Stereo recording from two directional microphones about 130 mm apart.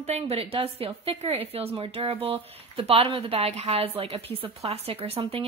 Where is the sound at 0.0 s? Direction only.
55° right (ahead or behind).